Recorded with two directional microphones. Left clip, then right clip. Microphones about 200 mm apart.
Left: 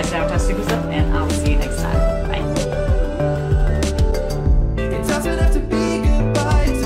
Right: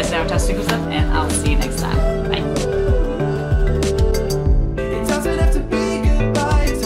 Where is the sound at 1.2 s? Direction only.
Centre (ahead or behind).